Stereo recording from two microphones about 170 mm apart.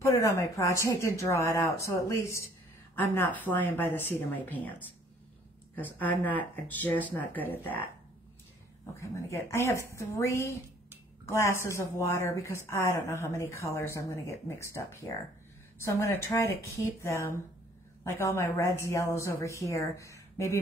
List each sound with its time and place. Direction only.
0.0 s a woman's voice: 20° left (ahead or behind)
8.9 s a woman's voice: 15° left (ahead or behind)